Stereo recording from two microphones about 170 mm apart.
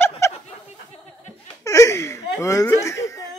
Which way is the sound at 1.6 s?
20° left (ahead or behind).